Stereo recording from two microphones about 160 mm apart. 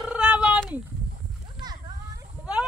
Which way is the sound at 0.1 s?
5° right (ahead or behind).